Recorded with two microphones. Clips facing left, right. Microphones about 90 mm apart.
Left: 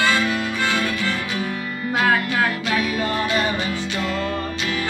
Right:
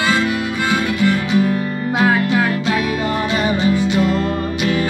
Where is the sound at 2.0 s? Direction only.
25° right (ahead or behind).